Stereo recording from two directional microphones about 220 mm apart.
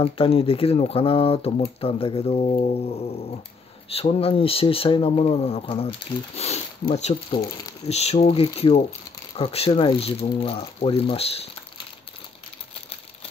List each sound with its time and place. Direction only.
0.0 s speech: 25° left (ahead or behind)
3.9 s speech: 25° left (ahead or behind)